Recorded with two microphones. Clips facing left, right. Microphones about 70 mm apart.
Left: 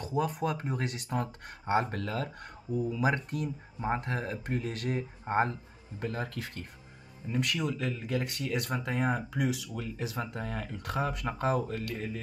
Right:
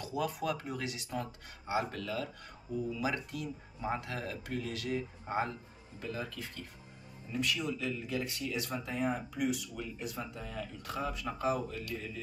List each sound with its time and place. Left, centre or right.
0.0 s speech: left
10.4 s speech: left